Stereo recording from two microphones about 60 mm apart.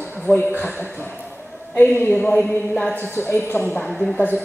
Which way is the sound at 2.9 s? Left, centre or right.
Left.